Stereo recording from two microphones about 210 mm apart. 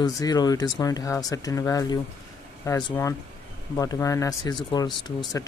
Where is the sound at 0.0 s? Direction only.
20° left (ahead or behind).